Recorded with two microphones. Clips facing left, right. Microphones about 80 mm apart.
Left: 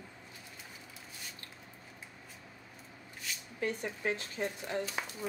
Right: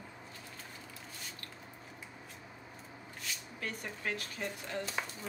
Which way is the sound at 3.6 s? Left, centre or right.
Left.